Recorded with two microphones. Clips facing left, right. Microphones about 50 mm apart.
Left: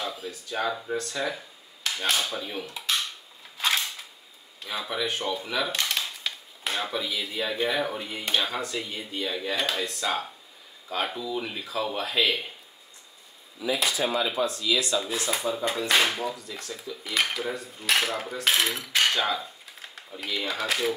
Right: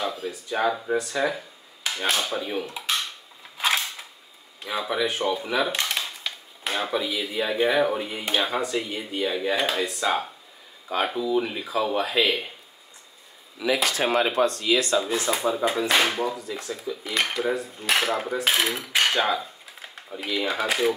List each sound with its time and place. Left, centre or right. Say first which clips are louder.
0.0 s speech: right 5 dB; centre
3.5 s creak: right 2 dB; centre
4.6 s speech: right 5 dB; centre
13.8 s speech: right 3 dB; right
14.6 s speech: right 4 dB; right
15.4 s speech: right 4 dB; centre
17.5 s cutlery: right 3 dB; centre
20.2 s speech: right 4 dB; centre